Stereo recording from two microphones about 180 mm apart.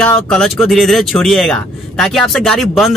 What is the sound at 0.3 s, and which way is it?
Speech, 5° left (ahead or behind).